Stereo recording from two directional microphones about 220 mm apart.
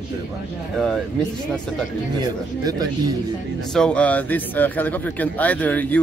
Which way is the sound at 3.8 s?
5° left (ahead or behind).